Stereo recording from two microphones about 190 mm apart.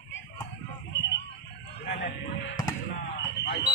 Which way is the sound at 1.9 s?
50° left (ahead or behind).